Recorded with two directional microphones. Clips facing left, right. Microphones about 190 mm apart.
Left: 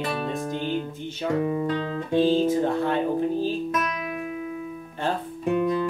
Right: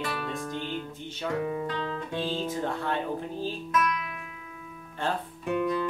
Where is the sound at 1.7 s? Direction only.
45° left (ahead or behind).